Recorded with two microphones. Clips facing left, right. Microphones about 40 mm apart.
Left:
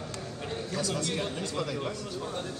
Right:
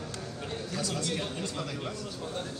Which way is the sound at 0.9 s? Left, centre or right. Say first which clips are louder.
Left 1 dB; left.